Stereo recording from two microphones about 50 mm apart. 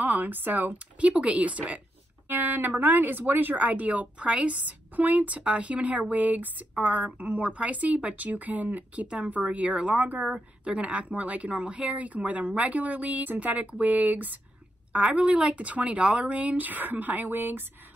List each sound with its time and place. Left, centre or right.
0.0 s speech: right
0.9 s a woman's voice: right
2.2 s speech: right
9.3 s a woman's voice: right